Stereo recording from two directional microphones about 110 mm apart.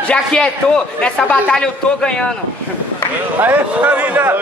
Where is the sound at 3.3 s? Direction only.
15° right (ahead or behind).